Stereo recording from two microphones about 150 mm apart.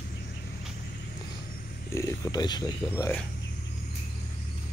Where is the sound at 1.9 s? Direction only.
25° left (ahead or behind).